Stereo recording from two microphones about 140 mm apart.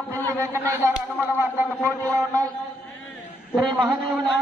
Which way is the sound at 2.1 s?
25° right (ahead or behind).